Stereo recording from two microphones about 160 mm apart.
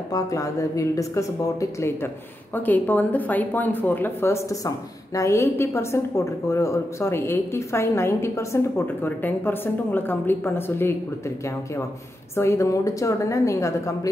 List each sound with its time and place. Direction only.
0.1 s a woman's voice: 20° left (ahead or behind)